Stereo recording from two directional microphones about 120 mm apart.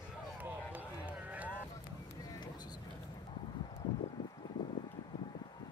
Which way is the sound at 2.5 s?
35° left (ahead or behind).